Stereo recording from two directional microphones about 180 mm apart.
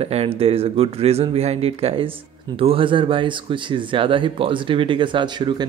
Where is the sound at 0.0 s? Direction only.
35° right (ahead or behind).